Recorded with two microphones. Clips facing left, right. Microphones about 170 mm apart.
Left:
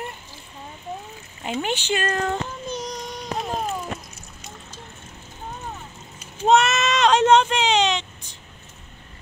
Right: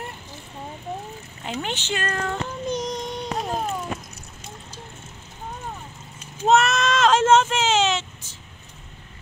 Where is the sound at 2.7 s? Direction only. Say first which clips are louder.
Right 4 dB; 20° right (ahead or behind).